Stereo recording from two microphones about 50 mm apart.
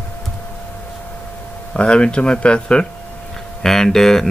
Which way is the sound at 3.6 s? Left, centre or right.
Centre.